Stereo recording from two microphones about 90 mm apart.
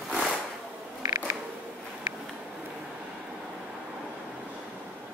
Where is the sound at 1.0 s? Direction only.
35° right (ahead or behind).